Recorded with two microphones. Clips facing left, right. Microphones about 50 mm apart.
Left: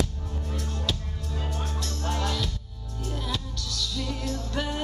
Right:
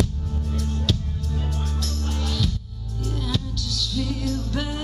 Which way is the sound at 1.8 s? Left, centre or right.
Centre.